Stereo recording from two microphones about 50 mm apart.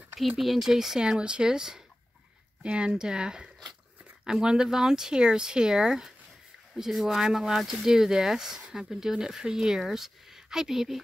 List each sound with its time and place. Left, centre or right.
0.4 s speech: centre